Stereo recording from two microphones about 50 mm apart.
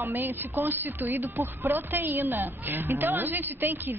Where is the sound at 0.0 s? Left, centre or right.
Right.